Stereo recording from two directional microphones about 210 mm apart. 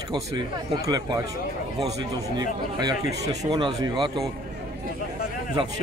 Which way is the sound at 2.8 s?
20° right (ahead or behind).